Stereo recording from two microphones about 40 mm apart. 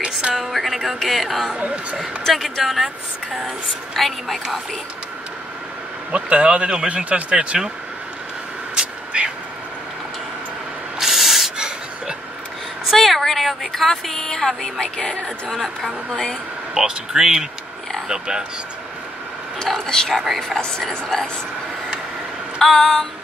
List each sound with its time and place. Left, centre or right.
0.0 s music: right
0.5 s speech: centre
3.9 s speech: centre
6.1 s speech: right
6.9 s speech: right
11.0 s rub: centre
11.5 s gasp: right
12.9 s speech: centre
14.1 s speech: centre
15.5 s speech: centre
16.7 s speech: centre
19.9 s speech: centre
22.6 s speech: centre